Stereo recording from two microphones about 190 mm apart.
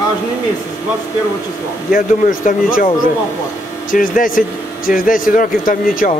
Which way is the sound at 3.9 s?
45° left (ahead or behind).